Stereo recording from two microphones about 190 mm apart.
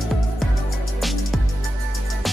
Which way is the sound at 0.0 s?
Centre (ahead or behind).